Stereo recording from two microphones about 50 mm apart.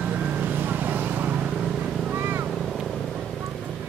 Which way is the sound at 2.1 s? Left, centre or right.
Right.